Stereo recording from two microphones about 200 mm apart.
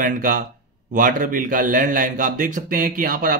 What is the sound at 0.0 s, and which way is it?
A man's voice, 40° right (ahead or behind).